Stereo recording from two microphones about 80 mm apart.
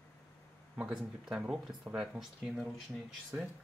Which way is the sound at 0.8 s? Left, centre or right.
Centre.